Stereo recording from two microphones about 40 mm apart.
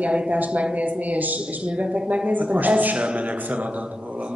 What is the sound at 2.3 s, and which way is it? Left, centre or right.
Speech, right.